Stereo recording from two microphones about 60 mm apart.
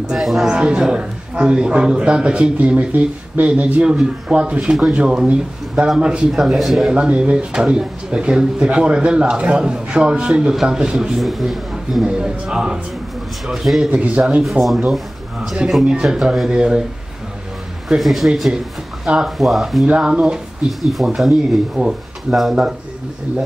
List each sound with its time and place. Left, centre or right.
0.1 s a man's voice: centre
0.5 s a man's voice: centre
6.9 s a man's voice: centre
10.5 s a man's voice: centre
11.1 s a man's voice: centre
13.9 s speech: right
15.8 s a man's voice: centre
17.8 s a man's voice: centre
20.8 s a man's voice: centre
21.8 s speech: right
22.3 s a man's voice: centre